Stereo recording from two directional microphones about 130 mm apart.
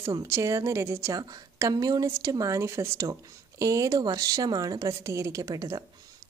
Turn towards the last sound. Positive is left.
turn(degrees=-25)  # may be behind; listen again after turning